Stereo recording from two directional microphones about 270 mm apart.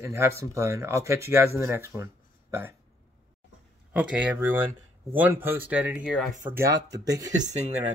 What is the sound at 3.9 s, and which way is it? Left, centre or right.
Speech, centre.